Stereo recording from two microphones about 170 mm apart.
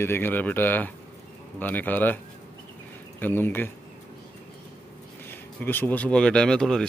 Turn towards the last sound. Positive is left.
turn(degrees=5)  # may be behind; listen again after turning